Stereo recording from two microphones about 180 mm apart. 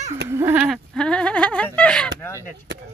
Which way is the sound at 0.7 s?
5° left (ahead or behind).